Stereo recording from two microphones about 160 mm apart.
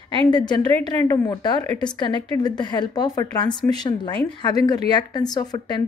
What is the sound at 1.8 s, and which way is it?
Speech, 30° left (ahead or behind).